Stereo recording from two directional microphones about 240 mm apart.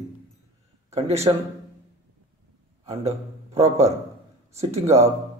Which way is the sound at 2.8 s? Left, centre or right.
Right.